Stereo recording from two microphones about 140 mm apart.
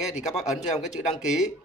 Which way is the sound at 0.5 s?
55° left (ahead or behind).